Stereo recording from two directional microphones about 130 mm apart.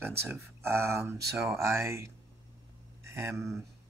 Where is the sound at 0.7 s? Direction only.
20° right (ahead or behind).